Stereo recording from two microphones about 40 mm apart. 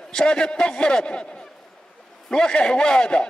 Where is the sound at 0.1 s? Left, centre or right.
Centre.